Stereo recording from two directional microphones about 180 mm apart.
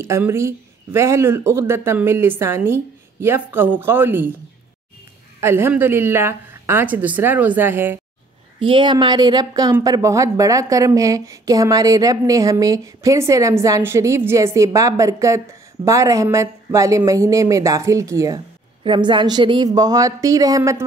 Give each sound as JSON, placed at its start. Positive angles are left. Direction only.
{"t": 0.0, "sound": "speech", "side_deg": -15}
{"t": 5.4, "sound": "speech", "side_deg": -15}
{"t": 8.5, "sound": "speech", "side_deg": -30}